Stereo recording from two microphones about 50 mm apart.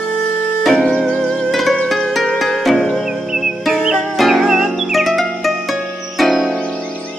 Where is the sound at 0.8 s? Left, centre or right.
Centre.